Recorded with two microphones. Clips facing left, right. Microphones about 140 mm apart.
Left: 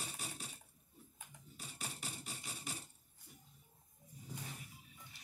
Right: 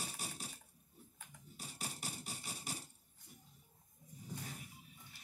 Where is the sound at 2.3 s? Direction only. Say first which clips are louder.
Right 1 dB; 40° right (ahead or behind).